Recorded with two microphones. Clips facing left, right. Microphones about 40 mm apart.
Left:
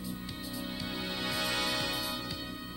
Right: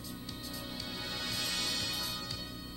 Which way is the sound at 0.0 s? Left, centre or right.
Centre.